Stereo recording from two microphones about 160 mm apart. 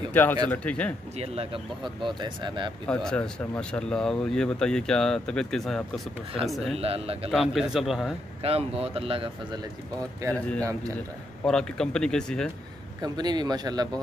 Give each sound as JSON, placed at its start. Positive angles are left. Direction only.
{"t": 0.1, "sound": "speech", "side_deg": 10}
{"t": 1.1, "sound": "speech", "side_deg": -40}
{"t": 2.9, "sound": "speech", "side_deg": 5}
{"t": 6.8, "sound": "speech", "side_deg": -40}
{"t": 7.2, "sound": "speech", "side_deg": 0}
{"t": 8.4, "sound": "speech", "side_deg": -40}
{"t": 10.6, "sound": "speech", "side_deg": -20}
{"t": 11.4, "sound": "speech", "side_deg": 5}
{"t": 13.0, "sound": "speech", "side_deg": -25}